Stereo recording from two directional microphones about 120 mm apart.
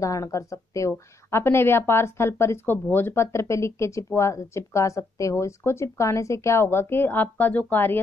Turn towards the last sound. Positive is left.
turn(degrees=15)  # may be behind; listen again after turning